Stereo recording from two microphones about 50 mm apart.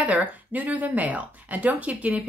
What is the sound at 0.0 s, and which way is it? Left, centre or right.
Speech, right.